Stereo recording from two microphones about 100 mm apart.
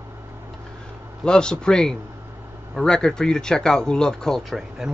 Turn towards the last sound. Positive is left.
turn(degrees=-5)  # may be behind; listen again after turning